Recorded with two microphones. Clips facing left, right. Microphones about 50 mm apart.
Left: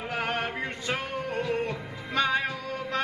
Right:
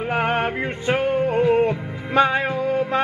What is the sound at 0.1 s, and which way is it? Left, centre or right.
Music, right.